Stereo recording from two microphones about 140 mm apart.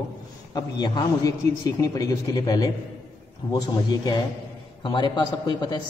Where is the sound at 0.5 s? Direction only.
30° left (ahead or behind).